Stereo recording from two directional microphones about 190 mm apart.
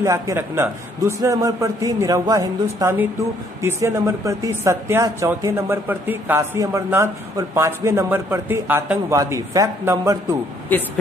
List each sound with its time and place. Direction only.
0.0 s speech: 15° right (ahead or behind)
10.7 s speech: 10° left (ahead or behind)